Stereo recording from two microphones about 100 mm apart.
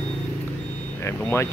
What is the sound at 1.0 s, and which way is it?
Speech, 25° left (ahead or behind).